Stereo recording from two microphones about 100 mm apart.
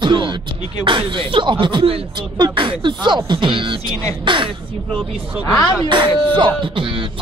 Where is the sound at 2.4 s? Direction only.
55° right (ahead or behind).